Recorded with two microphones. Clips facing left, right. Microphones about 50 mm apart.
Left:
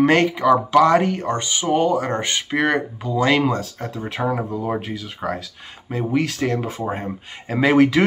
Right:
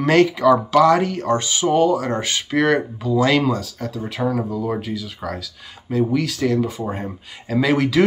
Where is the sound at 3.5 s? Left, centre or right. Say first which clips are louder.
Even; left.